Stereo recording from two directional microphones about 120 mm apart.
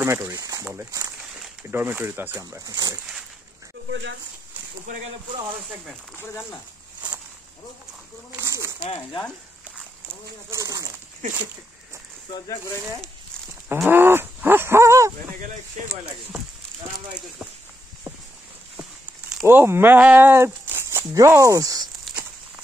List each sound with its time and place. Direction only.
0.0 s speech: 20° right (ahead or behind)
2.4 s speech: 30° right (ahead or behind)
6.1 s speech: 20° left (ahead or behind)
8.4 s speech: 25° right (ahead or behind)
8.8 s speech: 45° left (ahead or behind)
10.5 s speech: 25° right (ahead or behind)
13.8 s cattle: 20° right (ahead or behind)
15.3 s speech: 85° right
19.4 s speech: 20° right (ahead or behind)